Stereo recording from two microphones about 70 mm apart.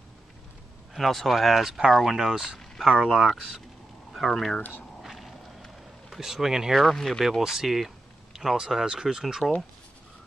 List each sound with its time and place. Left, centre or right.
0.9 s speech: centre
4.6 s speech: left
5.0 s a sound: centre
6.8 s speech: centre